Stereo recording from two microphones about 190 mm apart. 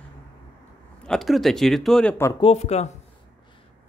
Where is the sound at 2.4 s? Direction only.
35° left (ahead or behind).